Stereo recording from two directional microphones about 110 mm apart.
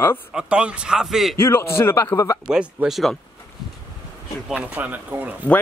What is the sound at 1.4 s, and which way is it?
Speech, 25° left (ahead or behind).